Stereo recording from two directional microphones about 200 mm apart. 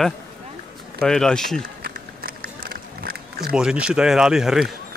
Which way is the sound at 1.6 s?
45° right (ahead or behind).